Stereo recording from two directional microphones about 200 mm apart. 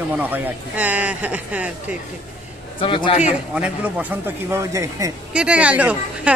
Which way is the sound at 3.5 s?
5° right (ahead or behind).